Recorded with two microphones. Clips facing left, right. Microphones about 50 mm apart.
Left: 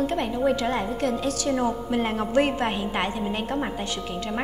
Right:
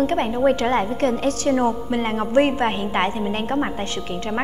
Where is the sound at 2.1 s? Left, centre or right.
Right.